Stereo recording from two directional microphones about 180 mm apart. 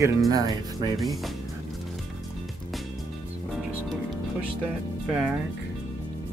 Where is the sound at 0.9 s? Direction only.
Centre (ahead or behind).